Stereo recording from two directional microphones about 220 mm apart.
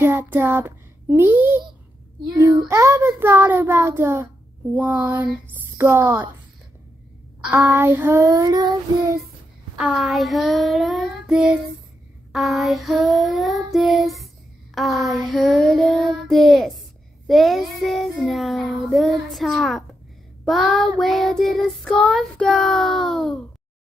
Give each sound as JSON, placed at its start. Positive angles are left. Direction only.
{"t": 0.0, "sound": "a child's voice", "side_deg": -10}
{"t": 2.7, "sound": "child singing", "side_deg": -15}
{"t": 7.4, "sound": "child singing", "side_deg": -10}
{"t": 9.8, "sound": "child singing", "side_deg": 0}